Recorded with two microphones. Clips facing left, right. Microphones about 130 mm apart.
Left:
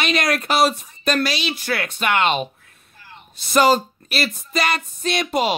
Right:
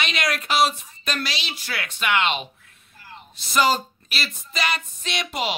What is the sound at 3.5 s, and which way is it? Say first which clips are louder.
A man's voice: left 5 dB; 50° left (ahead or behind).